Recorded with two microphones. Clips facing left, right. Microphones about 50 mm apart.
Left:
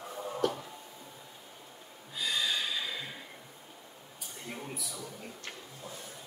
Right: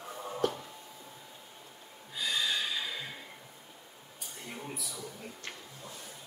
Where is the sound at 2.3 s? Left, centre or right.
Centre.